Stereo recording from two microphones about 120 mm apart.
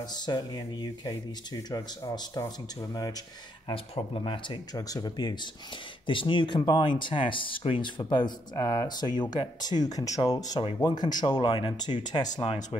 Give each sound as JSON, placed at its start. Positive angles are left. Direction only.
{"t": 0.0, "sound": "speech", "side_deg": 35}
{"t": 3.6, "sound": "speech", "side_deg": 50}
{"t": 4.7, "sound": "speech", "side_deg": 30}